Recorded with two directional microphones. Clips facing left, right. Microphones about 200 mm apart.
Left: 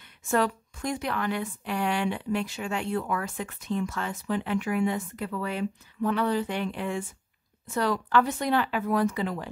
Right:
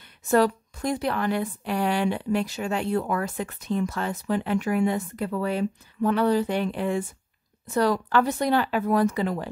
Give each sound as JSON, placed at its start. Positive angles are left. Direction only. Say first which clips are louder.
{"t": 0.3, "sound": "a woman's voice", "louder": "right 5 dB", "side_deg": -35}